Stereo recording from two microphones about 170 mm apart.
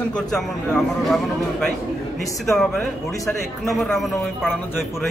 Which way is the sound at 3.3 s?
Centre (ahead or behind).